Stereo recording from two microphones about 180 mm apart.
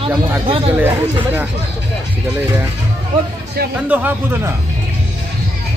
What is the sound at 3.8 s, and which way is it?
Speech, 10° right (ahead or behind).